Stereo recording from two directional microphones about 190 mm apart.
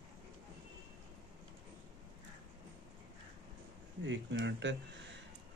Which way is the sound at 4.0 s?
70° right (ahead or behind).